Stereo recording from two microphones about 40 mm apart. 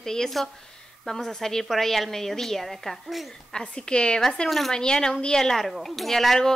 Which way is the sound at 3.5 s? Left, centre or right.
Left.